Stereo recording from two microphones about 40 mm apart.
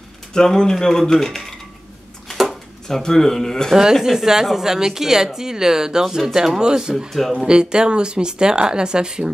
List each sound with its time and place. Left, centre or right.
0.3 s a man's voice: centre
2.2 s a sound: centre
2.9 s a man's voice: centre
3.7 s a woman's voice: centre
7.1 s speech: centre
7.3 s speech: right